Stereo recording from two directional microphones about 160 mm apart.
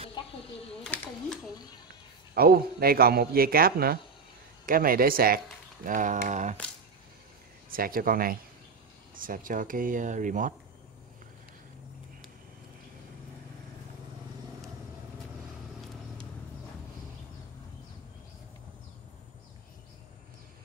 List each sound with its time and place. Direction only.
0.8 s a sound: 10° left (ahead or behind)
2.3 s a man's voice: 70° right (ahead or behind)
5.9 s speech: 50° right (ahead or behind)
7.7 s speech: 65° right (ahead or behind)